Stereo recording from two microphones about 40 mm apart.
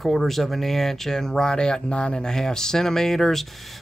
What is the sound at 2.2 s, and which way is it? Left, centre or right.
Speech, centre.